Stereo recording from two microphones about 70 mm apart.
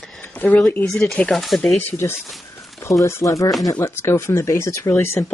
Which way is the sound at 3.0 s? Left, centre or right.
Left.